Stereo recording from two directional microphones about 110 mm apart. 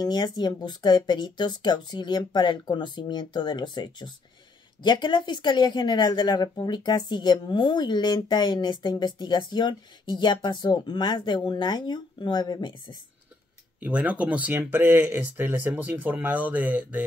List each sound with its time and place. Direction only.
0.0 s speech: 40° left (ahead or behind)
13.7 s speech: 10° right (ahead or behind)